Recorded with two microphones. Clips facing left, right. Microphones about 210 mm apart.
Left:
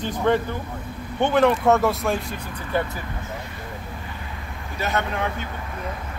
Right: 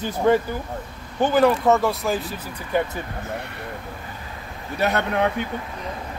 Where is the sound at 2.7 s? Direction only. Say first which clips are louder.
Right 2 dB; 15° right (ahead or behind).